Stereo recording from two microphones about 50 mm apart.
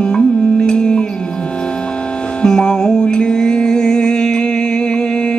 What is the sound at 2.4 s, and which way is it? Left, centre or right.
Music, centre.